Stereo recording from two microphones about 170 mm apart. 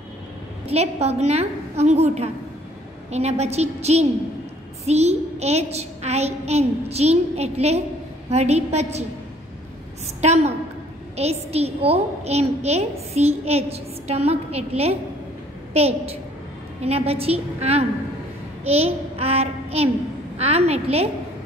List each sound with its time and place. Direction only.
0.7 s a woman's voice: 40° right (ahead or behind)
10.2 s a woman's voice: 40° right (ahead or behind)